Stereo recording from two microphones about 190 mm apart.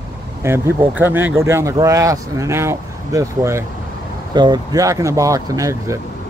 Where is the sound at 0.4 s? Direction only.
15° right (ahead or behind).